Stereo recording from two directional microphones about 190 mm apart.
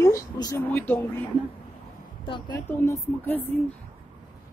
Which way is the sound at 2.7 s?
15° left (ahead or behind).